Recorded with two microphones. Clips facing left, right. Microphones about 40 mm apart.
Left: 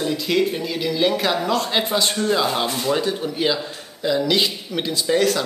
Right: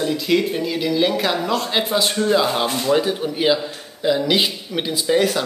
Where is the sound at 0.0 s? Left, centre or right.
Centre.